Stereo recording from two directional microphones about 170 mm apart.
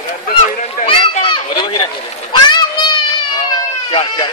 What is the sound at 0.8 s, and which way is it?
Children playing, 30° left (ahead or behind).